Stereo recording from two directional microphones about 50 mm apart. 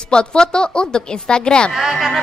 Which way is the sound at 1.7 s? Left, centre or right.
Centre.